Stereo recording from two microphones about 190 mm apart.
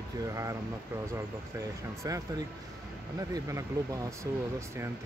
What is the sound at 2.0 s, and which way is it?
Speech, 20° right (ahead or behind).